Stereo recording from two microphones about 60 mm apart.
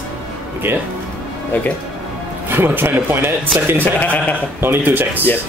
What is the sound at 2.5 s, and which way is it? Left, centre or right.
Speech, right.